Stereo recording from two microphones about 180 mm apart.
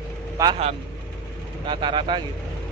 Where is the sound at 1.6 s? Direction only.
25° right (ahead or behind).